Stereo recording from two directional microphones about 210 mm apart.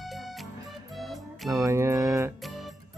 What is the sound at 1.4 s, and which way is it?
Music, 15° right (ahead or behind).